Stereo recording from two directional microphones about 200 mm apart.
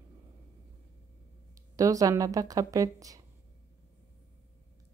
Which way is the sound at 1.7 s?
15° right (ahead or behind).